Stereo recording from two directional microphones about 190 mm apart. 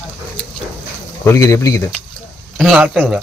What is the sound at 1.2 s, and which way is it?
Speech, 15° left (ahead or behind).